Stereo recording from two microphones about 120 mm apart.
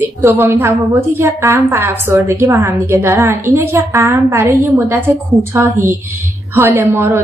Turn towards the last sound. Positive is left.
turn(degrees=-20)  # may be behind; listen again after turning